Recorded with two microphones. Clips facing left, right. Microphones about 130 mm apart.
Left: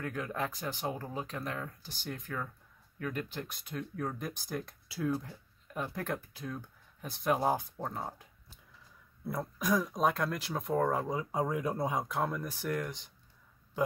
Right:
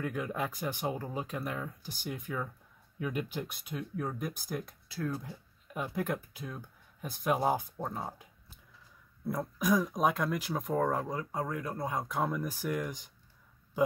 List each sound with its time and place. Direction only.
0.0 s speech: 10° right (ahead or behind); by 5.2 s 10° left (ahead or behind)
5.2 s speech: 5° right (ahead or behind)
9.6 s speech: 5° right (ahead or behind)
11.1 s speech: 15° left (ahead or behind)
11.9 s speech: centre (ahead or behind)